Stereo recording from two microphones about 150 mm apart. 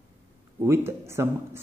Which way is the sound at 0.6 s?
15° right (ahead or behind).